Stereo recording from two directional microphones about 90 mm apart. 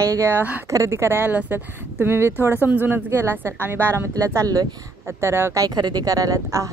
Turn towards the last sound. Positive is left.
turn(degrees=-40)  # may be behind; listen again after turning